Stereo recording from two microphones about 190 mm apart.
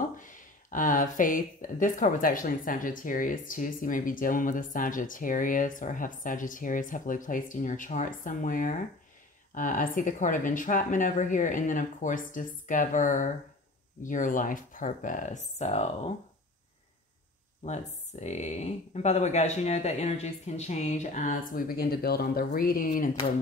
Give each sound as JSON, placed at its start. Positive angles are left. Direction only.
{"t": 0.2, "sound": "speech", "side_deg": 45}
{"t": 18.2, "sound": "speech", "side_deg": 35}